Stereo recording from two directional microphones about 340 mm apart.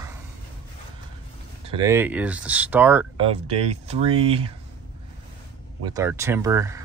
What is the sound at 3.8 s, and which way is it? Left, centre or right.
Speech, centre.